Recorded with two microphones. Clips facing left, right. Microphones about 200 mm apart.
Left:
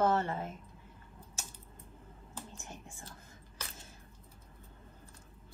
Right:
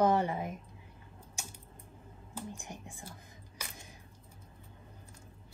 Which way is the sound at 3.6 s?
15° right (ahead or behind).